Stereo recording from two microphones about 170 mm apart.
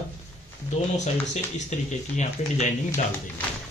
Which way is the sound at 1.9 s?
45° left (ahead or behind).